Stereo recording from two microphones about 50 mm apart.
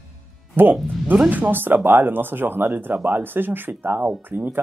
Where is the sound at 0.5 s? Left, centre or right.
Right.